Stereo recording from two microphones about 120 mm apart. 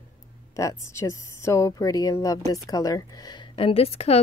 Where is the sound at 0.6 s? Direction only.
25° left (ahead or behind).